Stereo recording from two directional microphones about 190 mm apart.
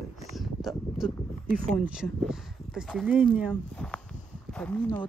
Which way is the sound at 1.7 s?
5° right (ahead or behind).